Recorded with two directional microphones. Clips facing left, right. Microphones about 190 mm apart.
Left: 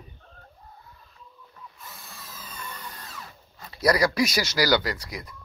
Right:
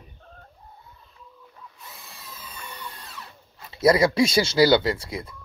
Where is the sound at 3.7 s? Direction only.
25° right (ahead or behind).